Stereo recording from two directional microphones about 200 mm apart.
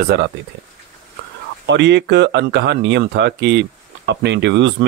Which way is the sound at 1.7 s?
60° right (ahead or behind).